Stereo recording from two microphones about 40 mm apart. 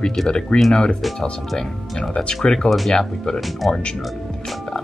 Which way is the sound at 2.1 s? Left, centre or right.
Left.